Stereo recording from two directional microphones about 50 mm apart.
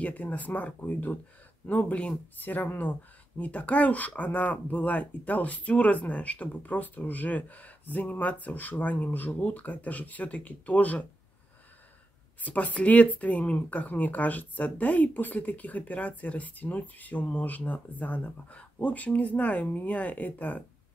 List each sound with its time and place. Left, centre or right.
0.0 s speech: left
12.4 s speech: left